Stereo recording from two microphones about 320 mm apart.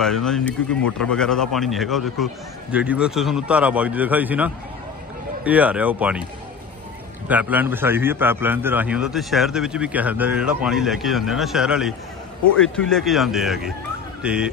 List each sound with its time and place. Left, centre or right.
0.0 s a man's voice: centre
7.2 s a man's voice: centre